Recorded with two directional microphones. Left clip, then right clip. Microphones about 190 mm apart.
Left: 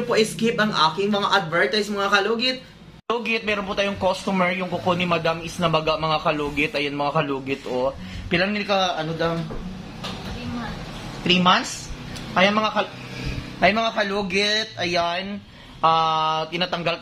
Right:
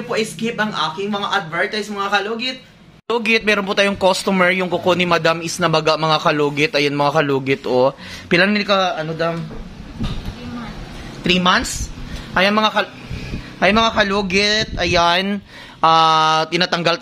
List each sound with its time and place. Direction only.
0.1 s speech: centre (ahead or behind)
3.1 s speech: 55° right (ahead or behind)
11.2 s a man's voice: 60° right (ahead or behind)